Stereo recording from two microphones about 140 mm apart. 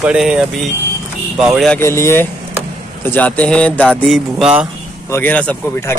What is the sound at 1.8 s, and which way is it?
Speech, 20° left (ahead or behind).